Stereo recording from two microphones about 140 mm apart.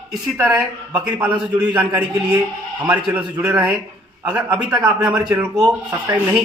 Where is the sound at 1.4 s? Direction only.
5° right (ahead or behind).